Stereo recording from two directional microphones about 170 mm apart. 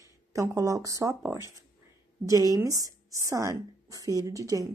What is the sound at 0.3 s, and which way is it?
A woman's voice, 20° right (ahead or behind).